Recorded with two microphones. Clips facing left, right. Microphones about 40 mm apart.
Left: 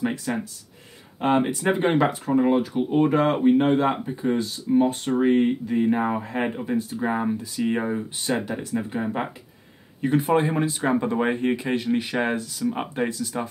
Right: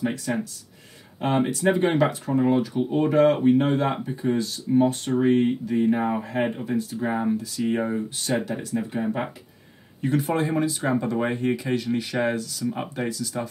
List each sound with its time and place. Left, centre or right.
0.3 s speech: centre
10.0 s speech: left